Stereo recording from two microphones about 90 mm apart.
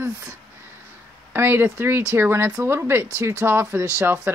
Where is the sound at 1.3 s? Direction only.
25° right (ahead or behind).